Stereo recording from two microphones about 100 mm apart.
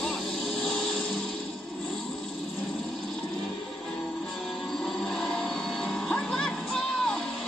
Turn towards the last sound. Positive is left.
turn(degrees=5)  # may be behind; listen again after turning